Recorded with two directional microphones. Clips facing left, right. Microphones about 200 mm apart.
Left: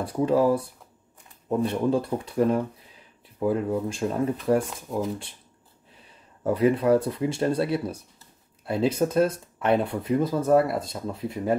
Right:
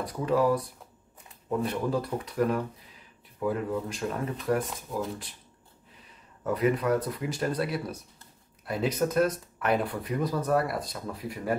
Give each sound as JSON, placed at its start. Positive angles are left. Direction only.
{"t": 0.0, "sound": "speech", "side_deg": 30}
{"t": 6.4, "sound": "speech", "side_deg": 30}